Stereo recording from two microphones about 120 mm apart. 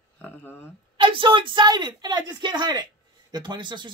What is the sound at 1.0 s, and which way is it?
Speech, 45° right (ahead or behind).